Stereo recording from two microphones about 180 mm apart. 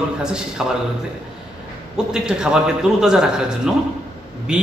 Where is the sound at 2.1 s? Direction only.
5° right (ahead or behind).